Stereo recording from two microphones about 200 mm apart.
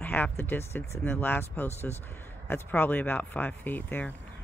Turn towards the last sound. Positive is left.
turn(degrees=10)  # may be behind; listen again after turning